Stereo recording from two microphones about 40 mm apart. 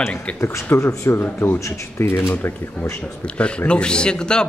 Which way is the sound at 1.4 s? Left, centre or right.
Left.